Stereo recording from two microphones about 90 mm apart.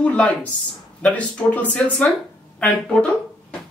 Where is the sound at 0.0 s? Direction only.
15° left (ahead or behind).